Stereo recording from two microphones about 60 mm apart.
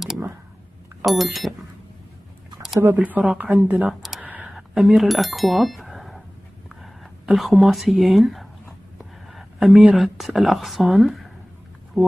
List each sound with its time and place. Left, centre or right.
1.0 s speech: centre
3.0 s speech: right
4.2 s a sound: right
4.5 s speech: centre